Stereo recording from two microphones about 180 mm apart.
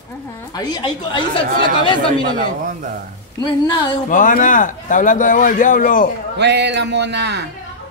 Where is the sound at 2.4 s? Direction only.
45° right (ahead or behind).